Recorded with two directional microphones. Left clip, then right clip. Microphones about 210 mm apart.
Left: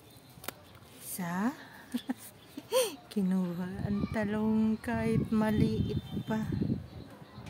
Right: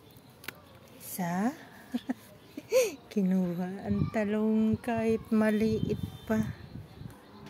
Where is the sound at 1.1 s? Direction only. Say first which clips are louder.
Right 3 dB; 10° right (ahead or behind).